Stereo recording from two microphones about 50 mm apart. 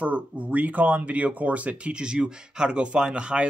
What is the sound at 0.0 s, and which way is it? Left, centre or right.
Speech, right.